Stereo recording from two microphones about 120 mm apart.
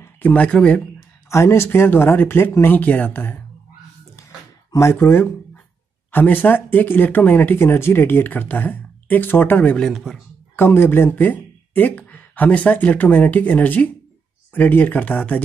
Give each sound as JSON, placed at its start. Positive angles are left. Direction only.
{"t": 0.0, "sound": "speech", "side_deg": 10}
{"t": 0.9, "sound": "speech", "side_deg": 25}
{"t": 4.7, "sound": "speech", "side_deg": 20}
{"t": 9.8, "sound": "speech", "side_deg": 0}
{"t": 10.5, "sound": "speech", "side_deg": 20}